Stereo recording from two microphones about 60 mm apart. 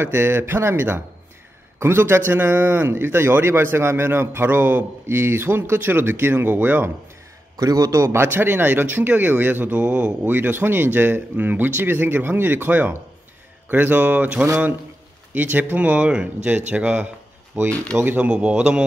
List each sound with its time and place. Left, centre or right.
0.0 s speech: right
7.5 s a man's voice: right
8.0 s speech: right; by 10.1 s centre
10.2 s speech: right
18.3 s speech: centre